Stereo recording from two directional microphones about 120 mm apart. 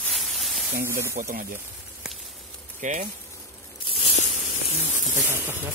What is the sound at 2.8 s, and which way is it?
Speech, 90° right.